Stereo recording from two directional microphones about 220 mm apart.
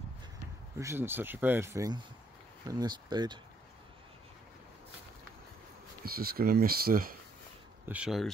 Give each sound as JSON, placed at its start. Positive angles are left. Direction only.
{"t": 0.7, "sound": "speech", "side_deg": -10}
{"t": 6.0, "sound": "speech", "side_deg": -40}
{"t": 7.8, "sound": "speech", "side_deg": -5}